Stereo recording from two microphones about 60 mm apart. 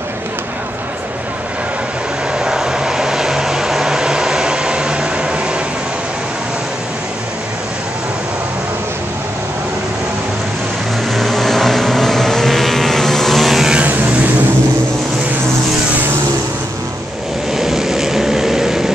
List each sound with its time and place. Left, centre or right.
2.3 s vehicle: centre
11.1 s vehicle: centre
17.6 s vehicle: centre